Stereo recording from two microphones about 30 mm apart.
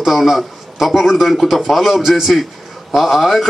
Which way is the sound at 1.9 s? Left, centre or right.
Centre.